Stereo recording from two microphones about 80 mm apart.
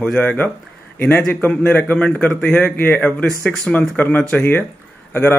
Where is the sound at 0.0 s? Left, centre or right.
Centre.